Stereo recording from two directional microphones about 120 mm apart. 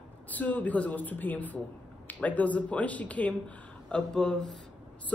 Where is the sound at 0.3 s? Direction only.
15° left (ahead or behind).